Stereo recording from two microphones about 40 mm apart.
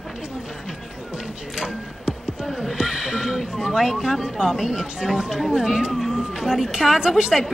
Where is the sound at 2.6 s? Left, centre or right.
Centre.